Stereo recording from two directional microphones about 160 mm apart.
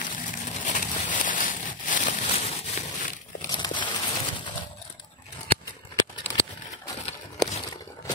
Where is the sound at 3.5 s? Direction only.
30° left (ahead or behind).